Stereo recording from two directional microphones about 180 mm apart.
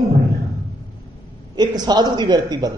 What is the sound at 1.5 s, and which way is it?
A man's voice, 20° right (ahead or behind).